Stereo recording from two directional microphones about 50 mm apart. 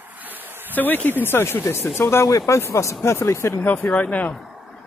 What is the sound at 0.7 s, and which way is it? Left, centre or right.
Speech, left.